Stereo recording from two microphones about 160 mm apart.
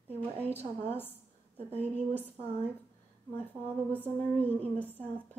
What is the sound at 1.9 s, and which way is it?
Speech, 10° left (ahead or behind).